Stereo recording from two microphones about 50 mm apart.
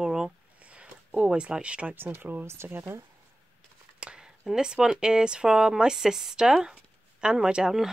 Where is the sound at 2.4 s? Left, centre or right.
Right.